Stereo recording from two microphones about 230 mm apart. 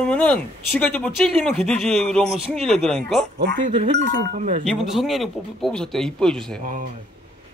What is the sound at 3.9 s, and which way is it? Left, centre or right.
Speech, right.